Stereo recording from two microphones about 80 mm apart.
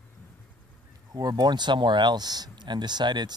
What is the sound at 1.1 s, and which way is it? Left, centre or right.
Speech, right.